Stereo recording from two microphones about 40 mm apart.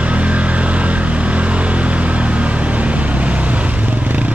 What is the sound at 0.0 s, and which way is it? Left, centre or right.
Vehicle, right.